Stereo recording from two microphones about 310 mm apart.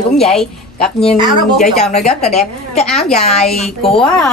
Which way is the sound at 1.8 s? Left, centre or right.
Centre.